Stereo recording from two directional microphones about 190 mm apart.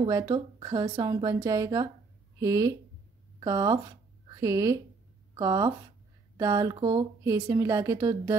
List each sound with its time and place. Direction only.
0.0 s speech: 20° right (ahead or behind)